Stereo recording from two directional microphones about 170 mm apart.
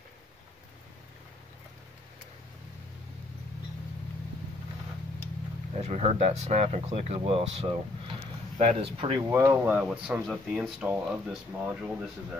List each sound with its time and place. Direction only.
5.8 s speech: 40° right (ahead or behind)
9.3 s speech: 15° right (ahead or behind)